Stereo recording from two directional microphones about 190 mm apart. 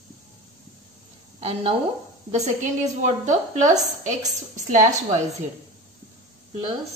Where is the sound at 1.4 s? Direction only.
30° right (ahead or behind).